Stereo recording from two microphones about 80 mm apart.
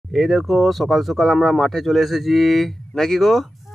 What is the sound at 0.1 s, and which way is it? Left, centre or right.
A man's voice, centre.